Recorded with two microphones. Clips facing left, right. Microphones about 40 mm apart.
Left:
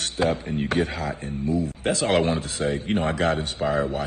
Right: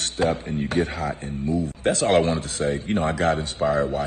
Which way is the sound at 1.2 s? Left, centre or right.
Right.